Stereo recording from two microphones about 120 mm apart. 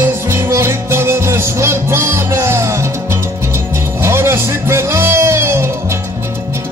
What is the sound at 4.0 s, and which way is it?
Music, 20° right (ahead or behind).